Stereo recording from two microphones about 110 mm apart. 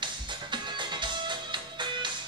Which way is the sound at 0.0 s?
45° right (ahead or behind).